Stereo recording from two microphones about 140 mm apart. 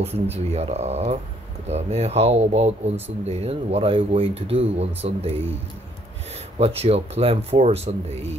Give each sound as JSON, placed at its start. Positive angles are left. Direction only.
{"t": 0.0, "sound": "speech", "side_deg": -45}
{"t": 6.6, "sound": "speech", "side_deg": -45}